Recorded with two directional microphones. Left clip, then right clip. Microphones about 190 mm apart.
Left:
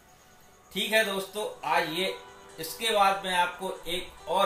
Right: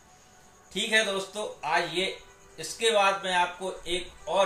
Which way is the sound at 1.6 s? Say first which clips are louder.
Even; 10° right (ahead or behind).